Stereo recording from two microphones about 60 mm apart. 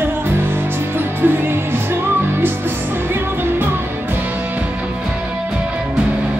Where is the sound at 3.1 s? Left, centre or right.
Right.